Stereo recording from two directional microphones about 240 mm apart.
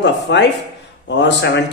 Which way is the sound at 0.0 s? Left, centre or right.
Left.